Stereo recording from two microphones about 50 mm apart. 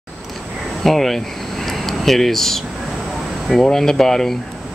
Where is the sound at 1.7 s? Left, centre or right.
Centre.